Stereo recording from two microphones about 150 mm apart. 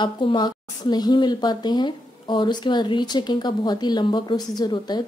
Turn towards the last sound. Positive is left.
turn(degrees=30)  # may be behind; listen again after turning